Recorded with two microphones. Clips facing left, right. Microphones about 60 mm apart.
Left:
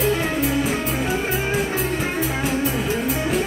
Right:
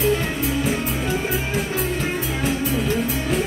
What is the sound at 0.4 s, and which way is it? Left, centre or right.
Music, centre.